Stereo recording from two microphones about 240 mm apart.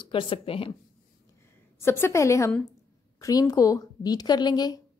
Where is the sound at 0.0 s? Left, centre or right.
Left.